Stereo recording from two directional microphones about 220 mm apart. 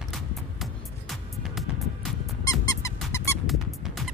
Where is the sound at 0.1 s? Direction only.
Centre (ahead or behind).